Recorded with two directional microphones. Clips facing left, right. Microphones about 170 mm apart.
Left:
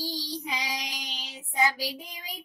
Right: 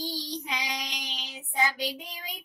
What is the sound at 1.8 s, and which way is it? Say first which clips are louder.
Child singing: right 1 dB; 5° left (ahead or behind).